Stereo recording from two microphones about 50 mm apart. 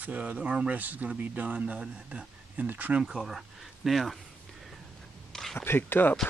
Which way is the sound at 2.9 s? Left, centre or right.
Centre.